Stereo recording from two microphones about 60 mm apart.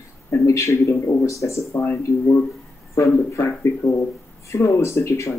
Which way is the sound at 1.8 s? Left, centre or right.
Left.